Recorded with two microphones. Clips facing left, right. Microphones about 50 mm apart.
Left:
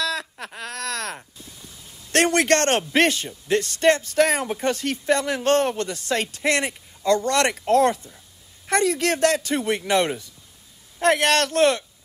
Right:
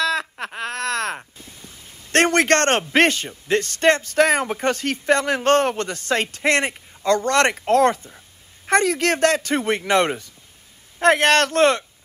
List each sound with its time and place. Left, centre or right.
0.0 s speech: right